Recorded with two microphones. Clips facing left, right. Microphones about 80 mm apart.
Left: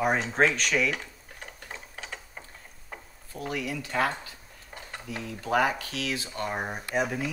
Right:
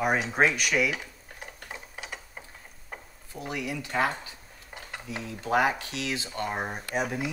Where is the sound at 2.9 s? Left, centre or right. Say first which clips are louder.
Even; centre.